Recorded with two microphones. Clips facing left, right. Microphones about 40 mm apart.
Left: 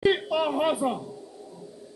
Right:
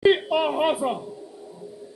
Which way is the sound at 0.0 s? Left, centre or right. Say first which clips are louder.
Right 4 dB; centre.